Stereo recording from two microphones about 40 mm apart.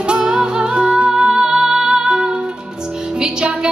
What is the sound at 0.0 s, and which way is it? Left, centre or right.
Music, right.